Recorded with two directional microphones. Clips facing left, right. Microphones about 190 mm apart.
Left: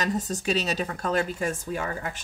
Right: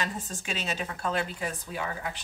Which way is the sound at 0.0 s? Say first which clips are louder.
Left 7 dB; 40° left (ahead or behind).